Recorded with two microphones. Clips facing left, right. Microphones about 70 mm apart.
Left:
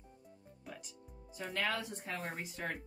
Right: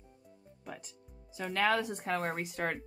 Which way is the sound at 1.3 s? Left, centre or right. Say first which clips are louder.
Right 5 dB; right.